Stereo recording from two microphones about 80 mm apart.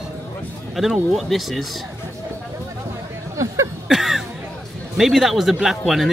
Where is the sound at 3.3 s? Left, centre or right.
Right.